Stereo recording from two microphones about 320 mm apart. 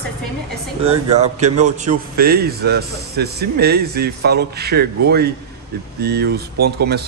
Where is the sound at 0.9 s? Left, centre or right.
Right.